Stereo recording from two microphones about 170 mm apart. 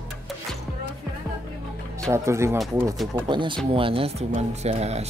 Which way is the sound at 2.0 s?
15° right (ahead or behind).